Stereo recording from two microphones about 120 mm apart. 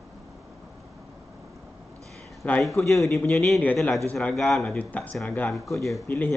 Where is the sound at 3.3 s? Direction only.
Centre (ahead or behind).